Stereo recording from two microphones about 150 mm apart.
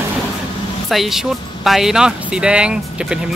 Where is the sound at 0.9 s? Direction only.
Centre (ahead or behind).